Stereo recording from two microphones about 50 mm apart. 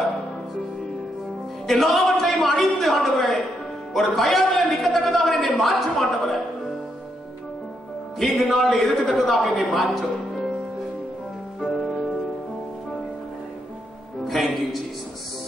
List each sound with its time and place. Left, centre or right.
1.7 s a sound: centre
3.9 s a man's voice: centre
8.2 s a man's voice: centre
14.2 s a man's voice: centre